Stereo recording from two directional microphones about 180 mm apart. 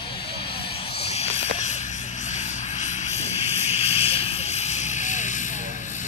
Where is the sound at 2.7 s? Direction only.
40° left (ahead or behind).